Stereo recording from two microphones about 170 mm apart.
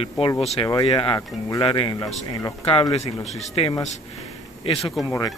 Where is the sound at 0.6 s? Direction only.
30° left (ahead or behind).